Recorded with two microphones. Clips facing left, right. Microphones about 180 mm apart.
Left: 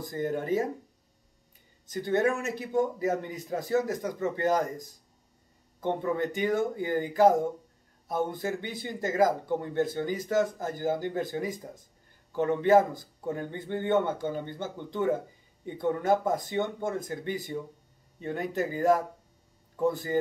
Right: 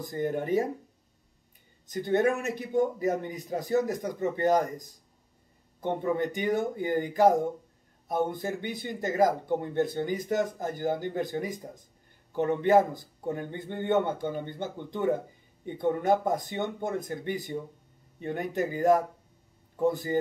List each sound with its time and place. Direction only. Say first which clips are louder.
0.0 s speech: right 1 dB; 20° right (ahead or behind)
2.0 s speech: right 1 dB; 15° right (ahead or behind)